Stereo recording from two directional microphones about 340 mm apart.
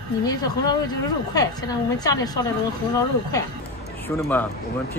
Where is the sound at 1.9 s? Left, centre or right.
Centre.